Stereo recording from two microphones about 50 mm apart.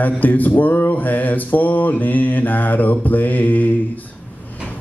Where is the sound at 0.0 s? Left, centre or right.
Left.